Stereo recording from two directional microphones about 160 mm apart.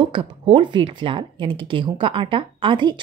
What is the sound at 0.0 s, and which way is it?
Speech, 35° right (ahead or behind).